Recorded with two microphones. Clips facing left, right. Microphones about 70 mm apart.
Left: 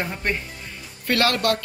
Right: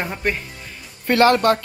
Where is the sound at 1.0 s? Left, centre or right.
Right.